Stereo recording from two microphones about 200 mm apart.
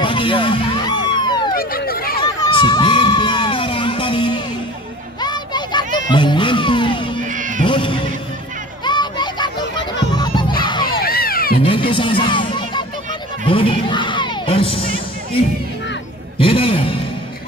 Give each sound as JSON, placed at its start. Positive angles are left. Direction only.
{"t": 0.0, "sound": "music", "side_deg": 25}
{"t": 1.5, "sound": "a sound", "side_deg": 45}
{"t": 2.2, "sound": "crowd", "side_deg": 20}
{"t": 5.2, "sound": "music", "side_deg": 20}
{"t": 7.2, "sound": "cat", "side_deg": -40}
{"t": 7.6, "sound": "music", "side_deg": 25}
{"t": 8.8, "sound": "children playing", "side_deg": 20}
{"t": 9.9, "sound": "music", "side_deg": 20}
{"t": 10.6, "sound": "crowd", "side_deg": 20}
{"t": 11.0, "sound": "crowd", "side_deg": 45}
{"t": 11.6, "sound": "music", "side_deg": 25}
{"t": 16.3, "sound": "a sound", "side_deg": 25}